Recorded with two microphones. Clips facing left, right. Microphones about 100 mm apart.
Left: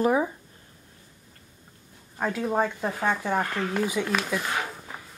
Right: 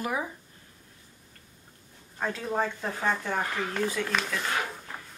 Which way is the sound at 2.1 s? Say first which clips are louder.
Left 4 dB; 10° left (ahead or behind).